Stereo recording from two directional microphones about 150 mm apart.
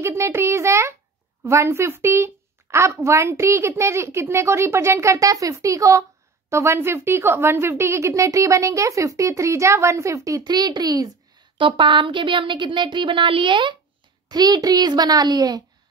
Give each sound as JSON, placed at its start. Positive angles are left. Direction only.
{"t": 0.0, "sound": "a child's voice", "side_deg": -20}